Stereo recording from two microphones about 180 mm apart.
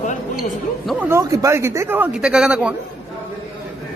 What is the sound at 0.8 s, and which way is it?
A man's voice, 10° right (ahead or behind).